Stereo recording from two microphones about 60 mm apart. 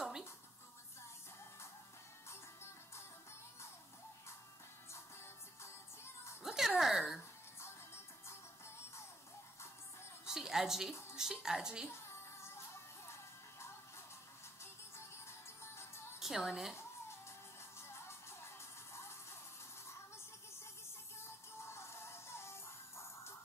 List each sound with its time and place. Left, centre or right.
2.2 s music: left
4.9 s music: left
6.4 s music: centre
6.8 s a sound: centre
7.6 s music: left
10.2 s music: centre
11.1 s speech: centre
11.9 s music: left
14.6 s music: left
16.2 s a woman's voice: centre
17.7 s music: left
21.6 s music: left